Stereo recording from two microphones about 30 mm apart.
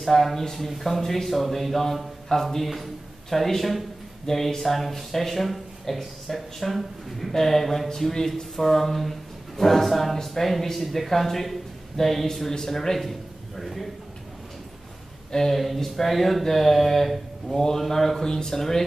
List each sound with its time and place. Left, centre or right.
0.0 s a man's voice: centre
15.3 s speech: centre
18.2 s speech: centre